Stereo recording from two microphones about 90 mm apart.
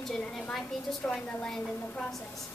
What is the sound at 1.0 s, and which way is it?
Speech, 15° left (ahead or behind).